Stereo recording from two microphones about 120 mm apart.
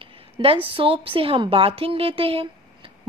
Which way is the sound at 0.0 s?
50° right (ahead or behind).